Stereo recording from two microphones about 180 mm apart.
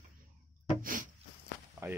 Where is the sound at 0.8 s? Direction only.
50° right (ahead or behind).